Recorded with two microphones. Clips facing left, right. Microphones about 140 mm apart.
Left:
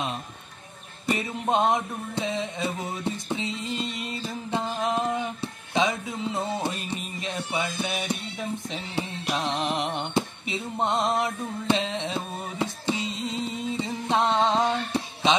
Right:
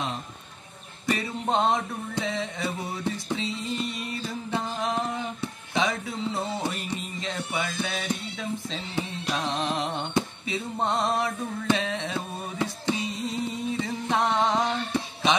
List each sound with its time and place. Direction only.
1.0 s music: 20° left (ahead or behind)